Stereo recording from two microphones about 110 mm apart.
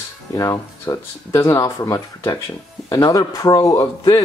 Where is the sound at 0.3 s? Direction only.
30° left (ahead or behind).